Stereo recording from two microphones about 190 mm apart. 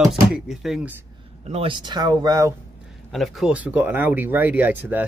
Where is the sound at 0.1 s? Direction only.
Centre (ahead or behind).